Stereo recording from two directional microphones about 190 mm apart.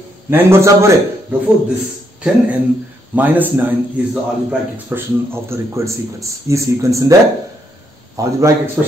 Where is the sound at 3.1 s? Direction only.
10° right (ahead or behind).